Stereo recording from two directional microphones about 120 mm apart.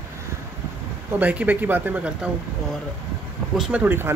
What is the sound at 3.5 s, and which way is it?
Speech, 5° right (ahead or behind).